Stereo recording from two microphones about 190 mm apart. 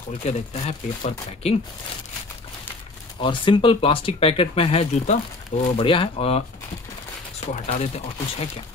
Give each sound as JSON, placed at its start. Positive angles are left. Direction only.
{"t": 0.2, "sound": "speech", "side_deg": 35}
{"t": 3.2, "sound": "speech", "side_deg": 25}